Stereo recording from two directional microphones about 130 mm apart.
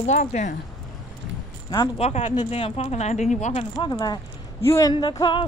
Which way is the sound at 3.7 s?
35° left (ahead or behind).